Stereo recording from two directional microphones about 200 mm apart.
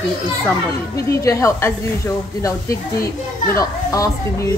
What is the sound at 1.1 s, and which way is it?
A woman's voice, 15° left (ahead or behind).